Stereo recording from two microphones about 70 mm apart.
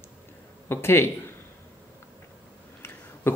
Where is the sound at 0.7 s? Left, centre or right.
Left.